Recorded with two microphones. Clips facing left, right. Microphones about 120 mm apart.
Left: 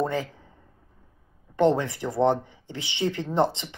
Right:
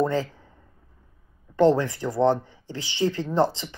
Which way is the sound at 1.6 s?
20° left (ahead or behind).